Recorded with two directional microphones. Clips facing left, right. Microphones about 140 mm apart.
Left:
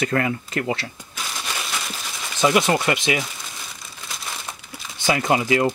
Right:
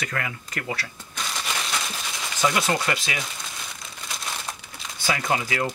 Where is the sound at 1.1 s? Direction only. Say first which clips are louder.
Right 1 dB; 5° left (ahead or behind).